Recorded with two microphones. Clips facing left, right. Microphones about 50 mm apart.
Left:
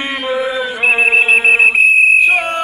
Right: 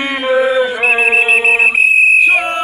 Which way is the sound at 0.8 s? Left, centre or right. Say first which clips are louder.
Even; right.